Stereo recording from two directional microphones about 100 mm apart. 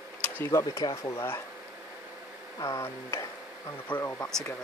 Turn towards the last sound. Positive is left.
turn(degrees=20)  # may be behind; listen again after turning